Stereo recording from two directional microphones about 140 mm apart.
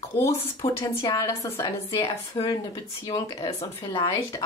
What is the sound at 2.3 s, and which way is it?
Speech, 40° left (ahead or behind).